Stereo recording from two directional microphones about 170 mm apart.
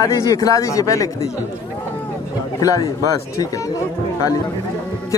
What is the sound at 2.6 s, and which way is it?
Speech, 20° left (ahead or behind).